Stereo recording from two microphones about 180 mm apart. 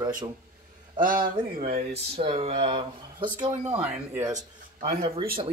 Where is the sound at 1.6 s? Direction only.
35° right (ahead or behind).